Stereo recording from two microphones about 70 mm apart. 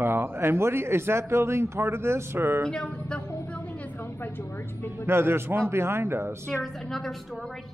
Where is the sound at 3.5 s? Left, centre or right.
Left.